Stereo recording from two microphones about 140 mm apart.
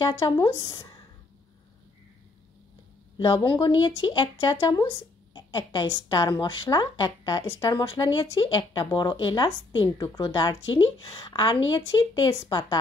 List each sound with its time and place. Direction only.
0.0 s speech: 30° left (ahead or behind)
3.2 s speech: 35° left (ahead or behind)